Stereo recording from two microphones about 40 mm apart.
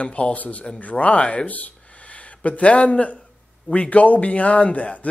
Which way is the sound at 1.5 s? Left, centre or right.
Left.